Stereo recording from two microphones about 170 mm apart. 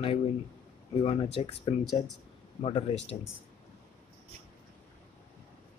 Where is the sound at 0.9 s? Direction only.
35° left (ahead or behind).